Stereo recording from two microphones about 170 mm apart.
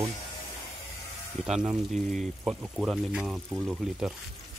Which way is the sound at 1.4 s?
5° right (ahead or behind).